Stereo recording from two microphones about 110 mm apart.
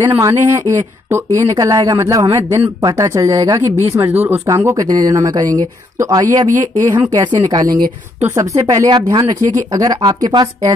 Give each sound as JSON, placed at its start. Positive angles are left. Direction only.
{"t": 0.2, "sound": "speech", "side_deg": -30}
{"t": 4.1, "sound": "speech", "side_deg": -20}